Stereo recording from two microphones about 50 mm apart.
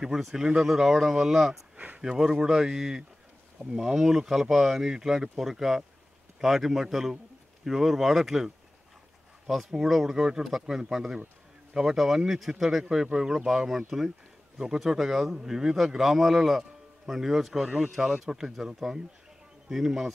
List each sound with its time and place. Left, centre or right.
0.0 s a man's voice: centre
9.5 s a man's voice: centre
17.6 s a man's voice: centre
17.9 s a man's voice: centre